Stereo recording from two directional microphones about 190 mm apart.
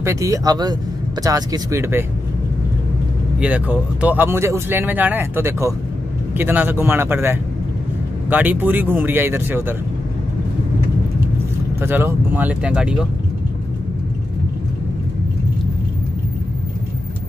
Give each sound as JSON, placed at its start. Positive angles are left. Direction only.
{"t": 0.0, "sound": "speech", "side_deg": -15}
{"t": 3.3, "sound": "speech", "side_deg": -5}
{"t": 11.8, "sound": "speech", "side_deg": -10}